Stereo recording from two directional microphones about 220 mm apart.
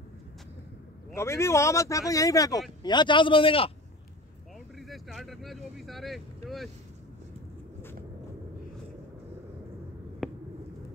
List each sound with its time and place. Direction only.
1.1 s a man's voice: 10° left (ahead or behind)
4.7 s speech: centre (ahead or behind)
10.2 s a sound: centre (ahead or behind)